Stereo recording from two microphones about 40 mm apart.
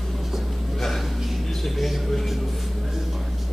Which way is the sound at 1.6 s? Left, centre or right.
Centre.